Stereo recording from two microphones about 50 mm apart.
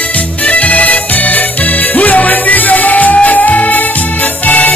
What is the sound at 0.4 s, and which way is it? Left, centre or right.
Music, left.